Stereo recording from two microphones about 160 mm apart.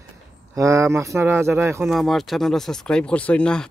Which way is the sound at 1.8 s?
Centre (ahead or behind).